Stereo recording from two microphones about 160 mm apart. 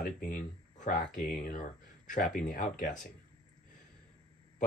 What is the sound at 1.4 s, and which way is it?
Speech, 55° left (ahead or behind).